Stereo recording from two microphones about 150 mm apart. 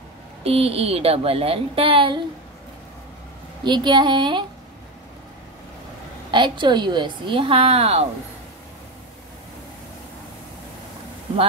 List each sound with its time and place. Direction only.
0.4 s a woman's voice: 40° right (ahead or behind)
3.6 s a woman's voice: 30° right (ahead or behind)
6.3 s a woman's voice: 30° right (ahead or behind)